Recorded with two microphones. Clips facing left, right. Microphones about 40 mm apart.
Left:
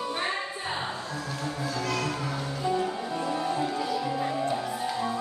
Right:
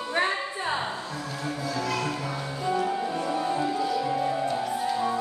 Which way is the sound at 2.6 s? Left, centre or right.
Centre.